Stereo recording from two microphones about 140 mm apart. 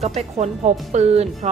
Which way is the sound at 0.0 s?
50° right (ahead or behind).